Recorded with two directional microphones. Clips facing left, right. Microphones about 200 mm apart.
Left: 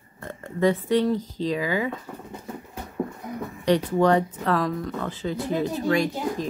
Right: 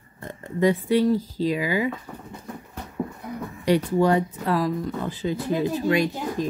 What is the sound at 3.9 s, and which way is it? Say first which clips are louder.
Speech: even; 10° right (ahead or behind).